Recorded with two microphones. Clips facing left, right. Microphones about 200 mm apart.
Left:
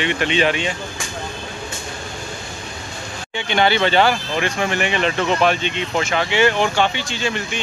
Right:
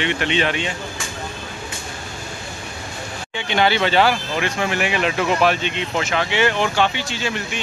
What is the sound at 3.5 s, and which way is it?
Speech, centre (ahead or behind).